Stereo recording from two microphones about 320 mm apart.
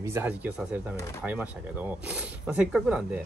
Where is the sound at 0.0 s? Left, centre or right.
Centre.